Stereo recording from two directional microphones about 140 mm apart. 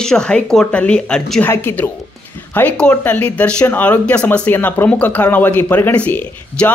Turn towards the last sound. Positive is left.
turn(degrees=10)  # may be behind; listen again after turning